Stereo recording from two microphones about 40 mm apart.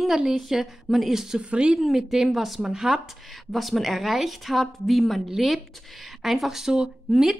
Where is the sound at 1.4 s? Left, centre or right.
Right.